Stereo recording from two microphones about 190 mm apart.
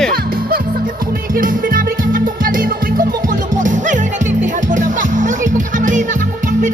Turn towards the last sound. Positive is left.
turn(degrees=-40)  # may be behind; listen again after turning